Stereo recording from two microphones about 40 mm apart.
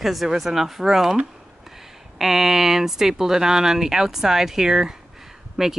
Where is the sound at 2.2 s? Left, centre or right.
Centre.